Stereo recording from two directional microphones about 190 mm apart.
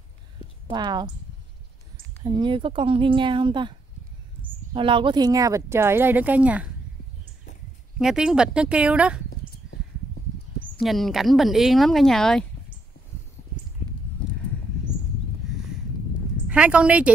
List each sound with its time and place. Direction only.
0.7 s speech: 20° right (ahead or behind)
2.2 s speech: 25° right (ahead or behind)
4.7 s speech: 25° right (ahead or behind); by 6.7 s 5° right (ahead or behind)
8.0 s speech: centre (ahead or behind)
10.8 s speech: centre (ahead or behind)
16.4 s speech: 5° right (ahead or behind)